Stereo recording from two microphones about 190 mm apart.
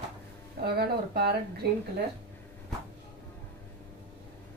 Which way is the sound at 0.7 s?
55° right (ahead or behind).